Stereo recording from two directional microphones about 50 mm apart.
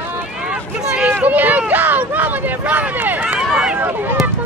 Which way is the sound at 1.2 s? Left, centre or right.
Right.